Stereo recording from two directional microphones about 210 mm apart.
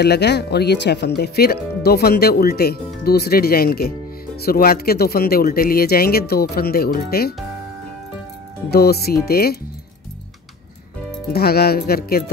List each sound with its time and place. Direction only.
0.0 s speech: 50° left (ahead or behind)
8.6 s speech: 50° left (ahead or behind)
11.3 s speech: 50° left (ahead or behind)